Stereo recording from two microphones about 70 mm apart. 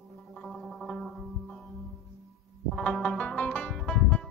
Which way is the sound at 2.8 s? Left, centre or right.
Centre.